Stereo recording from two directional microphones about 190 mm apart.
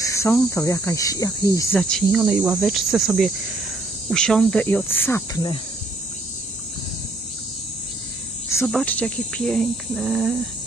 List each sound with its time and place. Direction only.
0.0 s cricket: 15° left (ahead or behind)
1.8 s speech: 5° left (ahead or behind)
4.1 s cricket: 5° left (ahead or behind); by 5.6 s 20° left (ahead or behind)
8.6 s speech: 5° left (ahead or behind)